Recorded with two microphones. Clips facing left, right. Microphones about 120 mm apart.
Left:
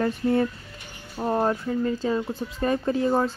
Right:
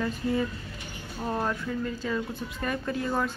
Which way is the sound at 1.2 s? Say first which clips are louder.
Left 6 dB; 35° left (ahead or behind).